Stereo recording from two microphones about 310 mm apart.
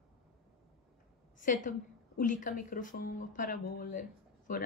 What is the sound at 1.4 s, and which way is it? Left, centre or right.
A woman's voice, left.